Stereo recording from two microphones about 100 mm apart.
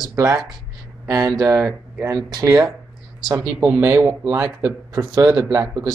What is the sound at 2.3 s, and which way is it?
Speech, 35° right (ahead or behind).